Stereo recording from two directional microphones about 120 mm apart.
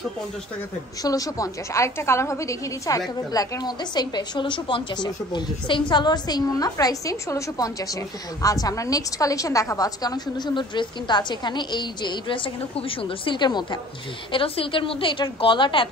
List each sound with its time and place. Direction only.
1.0 s a woman's voice: 30° left (ahead or behind)